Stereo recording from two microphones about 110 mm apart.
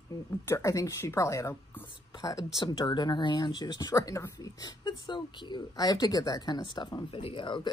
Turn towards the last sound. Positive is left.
turn(degrees=50)  # may be behind; listen again after turning